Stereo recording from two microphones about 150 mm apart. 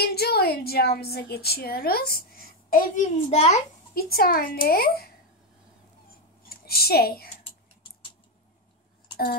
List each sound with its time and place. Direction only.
0.0 s speech: 90° left; by 3.6 s 45° left (ahead or behind)
3.9 s a child's voice: 85° left
6.4 s a woman's voice: 80° left